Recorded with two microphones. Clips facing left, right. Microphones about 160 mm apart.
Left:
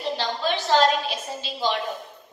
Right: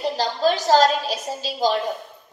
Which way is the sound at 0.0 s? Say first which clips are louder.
Right 5 dB; 40° right (ahead or behind).